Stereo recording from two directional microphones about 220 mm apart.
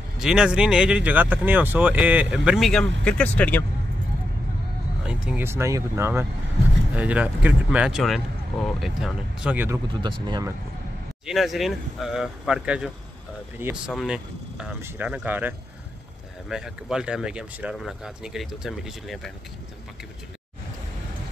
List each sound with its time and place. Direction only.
0.2 s speech: 5° right (ahead or behind)
5.0 s speech: 5° right (ahead or behind)
9.9 s speech: 20° right (ahead or behind)
11.2 s speech: centre (ahead or behind)